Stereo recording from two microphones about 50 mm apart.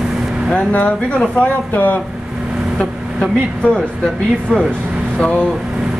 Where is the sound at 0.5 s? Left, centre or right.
Left.